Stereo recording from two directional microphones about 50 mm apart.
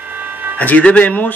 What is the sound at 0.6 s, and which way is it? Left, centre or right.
Speech, left.